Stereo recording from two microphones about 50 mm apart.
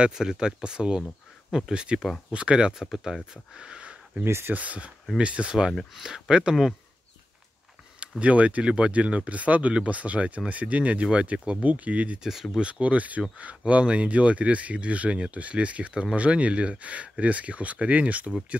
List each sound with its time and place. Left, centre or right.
0.0 s speech: centre
4.2 s speech: right
4.5 s speech: right
8.2 s speech: right
12.2 s speech: centre
12.5 s speech: right